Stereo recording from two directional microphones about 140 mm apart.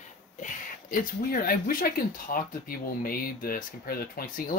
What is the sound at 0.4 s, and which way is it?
Speech, 80° left.